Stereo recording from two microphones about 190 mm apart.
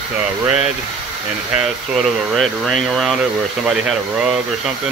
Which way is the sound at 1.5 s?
Centre (ahead or behind).